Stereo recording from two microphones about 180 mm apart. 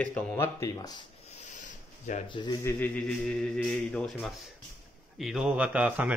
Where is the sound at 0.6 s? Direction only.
20° left (ahead or behind).